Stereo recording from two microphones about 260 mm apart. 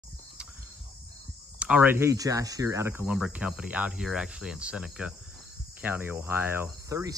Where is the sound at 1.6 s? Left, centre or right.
Centre.